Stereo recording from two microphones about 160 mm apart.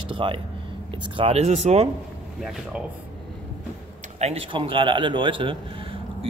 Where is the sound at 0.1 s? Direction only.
30° right (ahead or behind).